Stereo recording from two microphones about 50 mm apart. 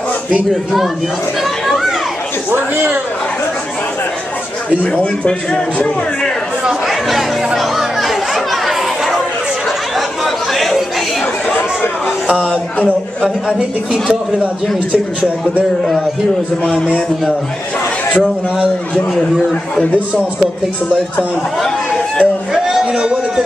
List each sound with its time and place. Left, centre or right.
1.7 s children playing: centre
6.9 s chatter: centre
9.9 s chatter: centre
12.3 s a woman's voice: right
21.6 s a sound: left
22.5 s a sound: centre